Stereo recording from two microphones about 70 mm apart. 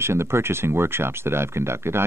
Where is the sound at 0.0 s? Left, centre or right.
Right.